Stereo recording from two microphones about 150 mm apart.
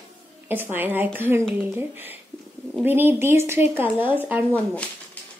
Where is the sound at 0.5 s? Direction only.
15° right (ahead or behind).